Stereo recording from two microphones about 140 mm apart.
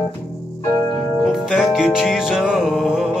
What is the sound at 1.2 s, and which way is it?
Music, 5° right (ahead or behind).